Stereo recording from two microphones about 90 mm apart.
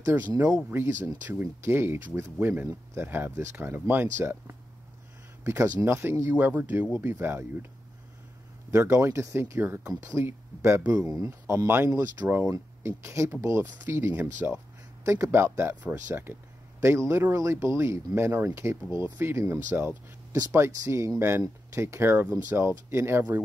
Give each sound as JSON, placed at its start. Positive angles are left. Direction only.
{"t": 0.7, "sound": "speech", "side_deg": -25}
{"t": 6.3, "sound": "speech", "side_deg": -20}
{"t": 8.7, "sound": "speech", "side_deg": -30}
{"t": 12.4, "sound": "speech", "side_deg": -35}
{"t": 15.0, "sound": "speech", "side_deg": -30}